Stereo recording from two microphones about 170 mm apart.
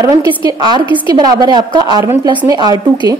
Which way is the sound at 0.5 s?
25° right (ahead or behind).